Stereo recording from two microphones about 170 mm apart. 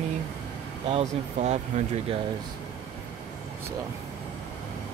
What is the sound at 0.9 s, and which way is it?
Speech, 40° right (ahead or behind).